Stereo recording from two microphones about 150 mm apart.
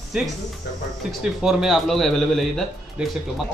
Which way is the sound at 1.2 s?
5° right (ahead or behind).